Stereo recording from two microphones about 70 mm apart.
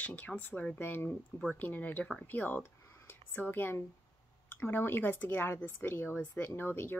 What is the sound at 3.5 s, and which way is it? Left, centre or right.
A woman's voice, left.